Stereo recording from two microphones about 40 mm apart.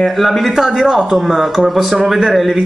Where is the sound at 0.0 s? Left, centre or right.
Centre.